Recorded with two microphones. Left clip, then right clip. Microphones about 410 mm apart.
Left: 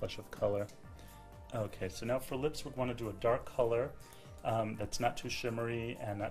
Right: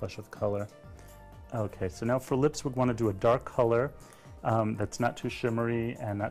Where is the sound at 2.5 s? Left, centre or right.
Right.